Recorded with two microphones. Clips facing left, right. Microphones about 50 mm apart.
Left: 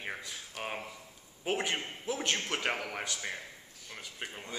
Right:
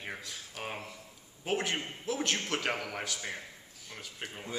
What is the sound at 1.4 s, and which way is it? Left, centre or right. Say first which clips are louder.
Speech: even; centre.